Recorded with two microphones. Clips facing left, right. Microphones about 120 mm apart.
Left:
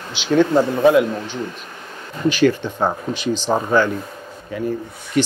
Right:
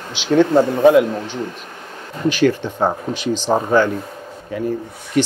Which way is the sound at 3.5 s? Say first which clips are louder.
Right 2 dB; 40° right (ahead or behind).